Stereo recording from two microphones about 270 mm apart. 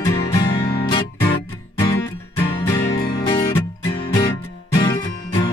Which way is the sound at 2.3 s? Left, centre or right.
Centre.